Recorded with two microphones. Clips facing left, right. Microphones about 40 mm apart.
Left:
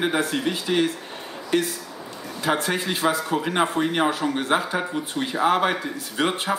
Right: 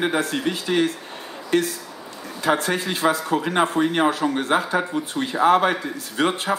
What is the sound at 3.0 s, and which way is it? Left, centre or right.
Speech, right.